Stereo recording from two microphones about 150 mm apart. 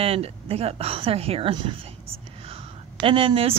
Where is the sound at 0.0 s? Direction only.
40° right (ahead or behind).